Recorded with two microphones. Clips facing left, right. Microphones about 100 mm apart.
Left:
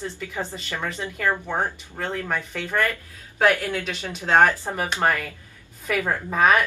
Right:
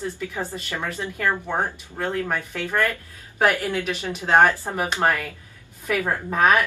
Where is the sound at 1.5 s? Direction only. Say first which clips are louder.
Right 1 dB; 5° right (ahead or behind).